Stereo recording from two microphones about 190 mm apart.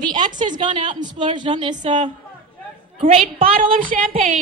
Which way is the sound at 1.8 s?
40° right (ahead or behind).